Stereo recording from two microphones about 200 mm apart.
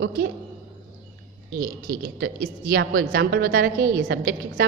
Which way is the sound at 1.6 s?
45° right (ahead or behind).